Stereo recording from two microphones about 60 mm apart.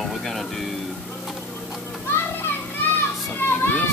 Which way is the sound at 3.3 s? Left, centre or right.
Left.